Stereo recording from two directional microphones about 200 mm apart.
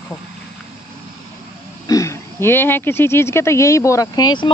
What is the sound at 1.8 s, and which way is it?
Speech, 15° left (ahead or behind).